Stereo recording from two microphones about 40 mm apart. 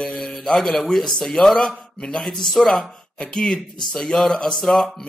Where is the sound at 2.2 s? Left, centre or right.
Centre.